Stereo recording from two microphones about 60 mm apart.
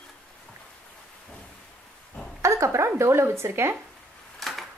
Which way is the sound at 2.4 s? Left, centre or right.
Right.